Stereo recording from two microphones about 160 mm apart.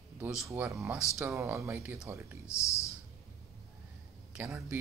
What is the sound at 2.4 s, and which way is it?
Speech, 15° left (ahead or behind).